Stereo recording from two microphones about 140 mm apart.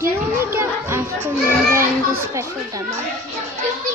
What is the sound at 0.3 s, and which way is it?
Children playing, 15° right (ahead or behind).